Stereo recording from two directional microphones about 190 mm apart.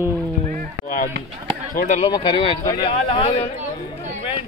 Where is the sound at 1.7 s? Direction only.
40° left (ahead or behind).